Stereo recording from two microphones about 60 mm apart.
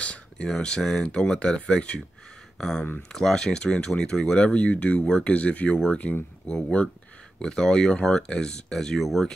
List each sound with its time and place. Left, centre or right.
0.0 s a sound: left
0.5 s speech: centre
8.7 s speech: centre